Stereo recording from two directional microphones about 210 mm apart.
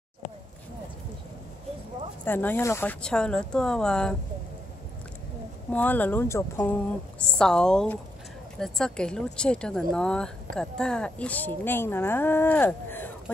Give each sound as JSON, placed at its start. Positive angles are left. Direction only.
{"t": 2.2, "sound": "speech", "side_deg": 10}
{"t": 5.7, "sound": "speech", "side_deg": 5}